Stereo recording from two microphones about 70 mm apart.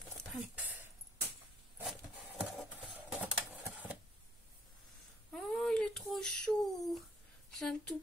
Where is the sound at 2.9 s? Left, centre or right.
Centre.